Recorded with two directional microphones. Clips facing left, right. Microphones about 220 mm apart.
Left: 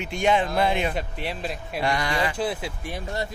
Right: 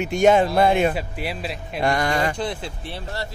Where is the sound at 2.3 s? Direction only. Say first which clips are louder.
Even; 5° left (ahead or behind).